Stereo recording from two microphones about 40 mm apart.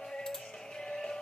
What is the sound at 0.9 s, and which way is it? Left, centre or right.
Music, centre.